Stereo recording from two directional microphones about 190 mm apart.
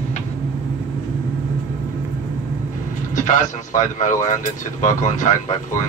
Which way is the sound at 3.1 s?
40° left (ahead or behind).